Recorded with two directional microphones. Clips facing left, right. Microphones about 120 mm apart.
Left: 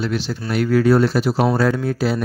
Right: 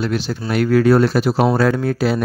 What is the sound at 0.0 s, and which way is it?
Speech, 50° right (ahead or behind).